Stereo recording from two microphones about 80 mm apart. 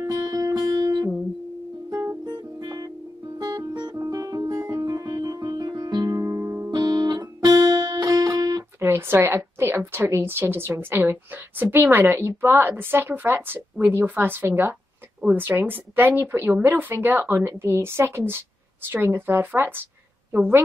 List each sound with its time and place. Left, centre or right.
0.0 s music: right
1.9 s music: right
2.2 s music: right
4.6 s music: right
6.7 s music: right
8.8 s a woman's voice: right